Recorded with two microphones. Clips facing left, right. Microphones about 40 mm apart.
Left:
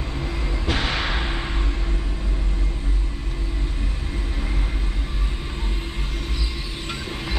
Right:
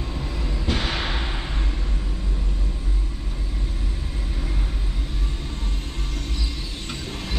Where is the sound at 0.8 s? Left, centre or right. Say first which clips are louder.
Left 2 dB; left.